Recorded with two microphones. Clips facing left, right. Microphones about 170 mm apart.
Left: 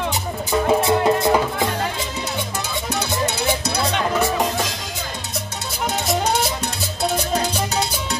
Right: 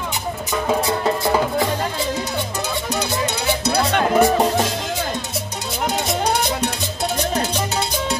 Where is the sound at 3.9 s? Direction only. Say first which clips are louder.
Right 5 dB; 55° right (ahead or behind).